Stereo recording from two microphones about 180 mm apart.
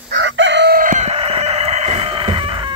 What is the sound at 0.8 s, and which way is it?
Chicken, 45° right (ahead or behind).